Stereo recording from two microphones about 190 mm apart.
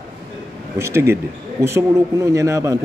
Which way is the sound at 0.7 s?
15° right (ahead or behind).